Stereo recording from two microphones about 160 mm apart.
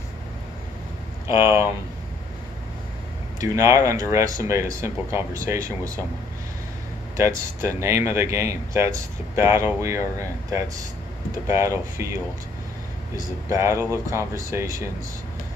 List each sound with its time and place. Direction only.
1.2 s speech: 15° right (ahead or behind)
3.3 s speech: 20° right (ahead or behind)
7.2 s speech: 20° right (ahead or behind)
13.5 s speech: 20° right (ahead or behind)